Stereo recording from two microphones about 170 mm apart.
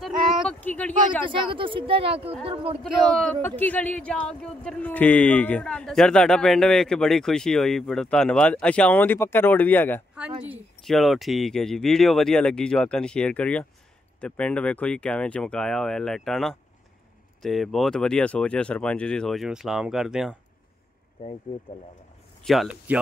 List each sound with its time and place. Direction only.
0.4 s a sound: 10° left (ahead or behind)
1.5 s speech: 30° right (ahead or behind)
2.8 s speech: 5° left (ahead or behind)
22.4 s speech: centre (ahead or behind)